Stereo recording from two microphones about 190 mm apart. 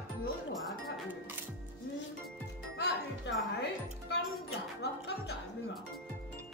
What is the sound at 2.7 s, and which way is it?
Music, 65° left (ahead or behind).